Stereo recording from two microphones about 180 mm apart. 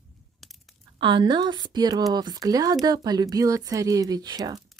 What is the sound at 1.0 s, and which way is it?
Speech, 25° right (ahead or behind).